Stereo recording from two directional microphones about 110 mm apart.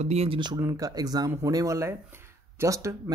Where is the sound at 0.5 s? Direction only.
30° right (ahead or behind).